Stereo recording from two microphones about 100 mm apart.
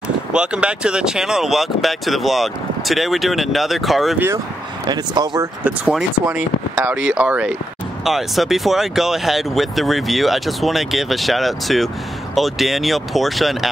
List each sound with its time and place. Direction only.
0.3 s speech: 10° right (ahead or behind)
4.8 s speech: 45° right (ahead or behind)
5.6 s speech: 15° right (ahead or behind)
8.0 s speech: centre (ahead or behind)